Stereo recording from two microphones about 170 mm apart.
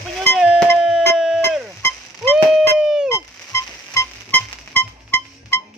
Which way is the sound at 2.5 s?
5° right (ahead or behind).